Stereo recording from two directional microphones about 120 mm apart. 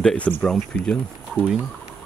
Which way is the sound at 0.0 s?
10° left (ahead or behind).